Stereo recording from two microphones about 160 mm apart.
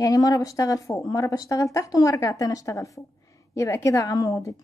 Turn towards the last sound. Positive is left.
turn(degrees=20)  # may be behind; listen again after turning